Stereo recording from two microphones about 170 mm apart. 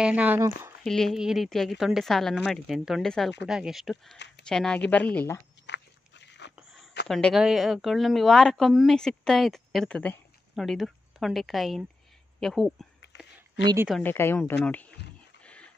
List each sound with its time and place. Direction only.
0.0 s speech: 10° right (ahead or behind)
0.8 s a woman's voice: centre (ahead or behind)
5.7 s a sound: 90° left
7.1 s a woman's voice: 5° left (ahead or behind)
14.0 s speech: 15° left (ahead or behind)
15.4 s dog: 5° left (ahead or behind)